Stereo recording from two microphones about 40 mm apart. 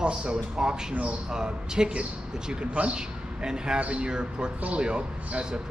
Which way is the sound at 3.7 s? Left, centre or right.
Right.